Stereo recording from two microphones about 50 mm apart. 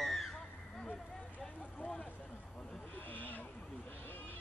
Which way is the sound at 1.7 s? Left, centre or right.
Left.